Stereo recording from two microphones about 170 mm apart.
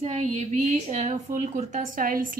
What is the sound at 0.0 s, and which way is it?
A woman's voice, 40° right (ahead or behind).